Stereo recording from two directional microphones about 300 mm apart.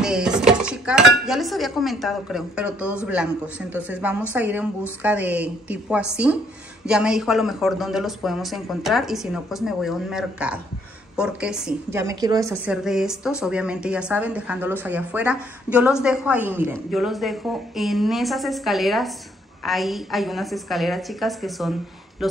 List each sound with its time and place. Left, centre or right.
0.0 s dishes: centre
3.7 s speech: centre